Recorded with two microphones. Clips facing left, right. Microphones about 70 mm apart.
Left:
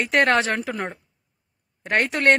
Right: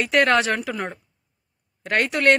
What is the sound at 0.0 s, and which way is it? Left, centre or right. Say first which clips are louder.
Speech: right 1 dB; left.